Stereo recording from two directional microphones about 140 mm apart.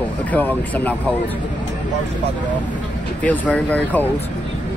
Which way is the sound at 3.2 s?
10° left (ahead or behind).